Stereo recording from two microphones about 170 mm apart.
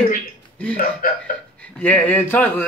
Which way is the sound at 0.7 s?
55° left (ahead or behind).